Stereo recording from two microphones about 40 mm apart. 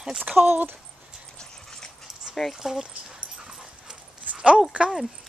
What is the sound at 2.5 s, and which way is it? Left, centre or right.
Speech, centre.